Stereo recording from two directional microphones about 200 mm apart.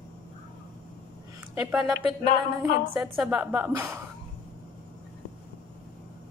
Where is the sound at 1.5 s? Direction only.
5° right (ahead or behind).